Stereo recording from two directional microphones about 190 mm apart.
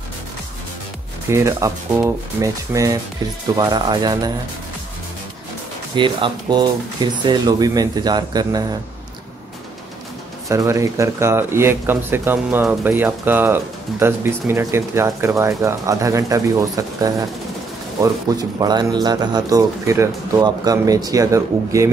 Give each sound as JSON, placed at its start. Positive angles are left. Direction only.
{"t": 1.3, "sound": "speech", "side_deg": -15}
{"t": 5.9, "sound": "speech", "side_deg": -25}
{"t": 10.5, "sound": "speech", "side_deg": -15}